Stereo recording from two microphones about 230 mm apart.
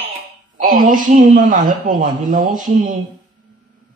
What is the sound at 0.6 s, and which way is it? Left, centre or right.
A woman's voice, right.